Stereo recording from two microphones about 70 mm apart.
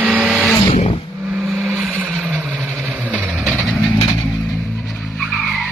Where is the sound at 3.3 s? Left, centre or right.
Centre.